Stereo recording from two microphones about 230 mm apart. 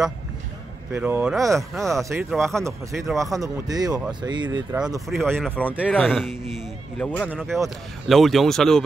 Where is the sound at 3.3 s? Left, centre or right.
Centre.